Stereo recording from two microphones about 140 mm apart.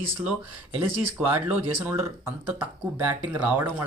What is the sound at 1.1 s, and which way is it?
Speech, 10° right (ahead or behind).